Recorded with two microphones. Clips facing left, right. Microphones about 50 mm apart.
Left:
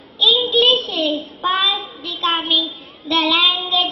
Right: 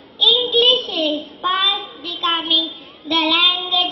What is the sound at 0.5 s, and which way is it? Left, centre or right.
Child singing, centre.